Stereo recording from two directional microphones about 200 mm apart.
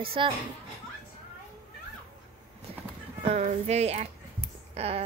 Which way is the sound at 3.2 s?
30° right (ahead or behind).